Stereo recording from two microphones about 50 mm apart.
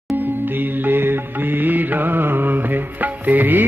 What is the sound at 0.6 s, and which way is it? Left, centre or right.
Music, right.